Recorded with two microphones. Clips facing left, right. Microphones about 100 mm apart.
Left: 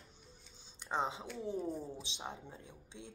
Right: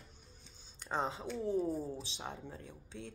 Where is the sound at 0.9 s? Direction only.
20° left (ahead or behind).